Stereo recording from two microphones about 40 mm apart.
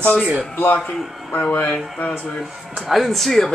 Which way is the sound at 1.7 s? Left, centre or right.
Left.